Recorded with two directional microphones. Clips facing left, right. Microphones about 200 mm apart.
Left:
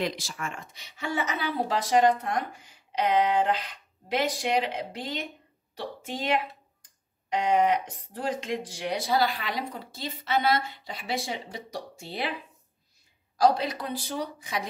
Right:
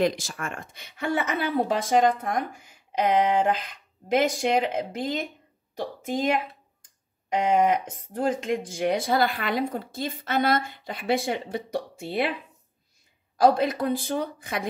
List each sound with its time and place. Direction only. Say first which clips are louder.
0.0 s speech: right 6 dB; 50° right (ahead or behind)
13.4 s speech: right 3 dB; 50° right (ahead or behind)